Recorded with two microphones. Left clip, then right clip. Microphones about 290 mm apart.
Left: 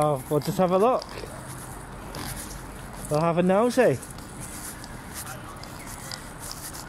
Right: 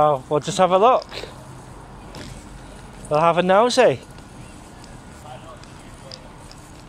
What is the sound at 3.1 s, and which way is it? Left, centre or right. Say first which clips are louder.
Speech: right 7 dB; right.